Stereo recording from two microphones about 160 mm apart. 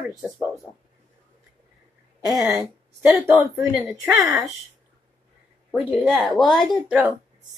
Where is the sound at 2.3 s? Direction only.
5° right (ahead or behind).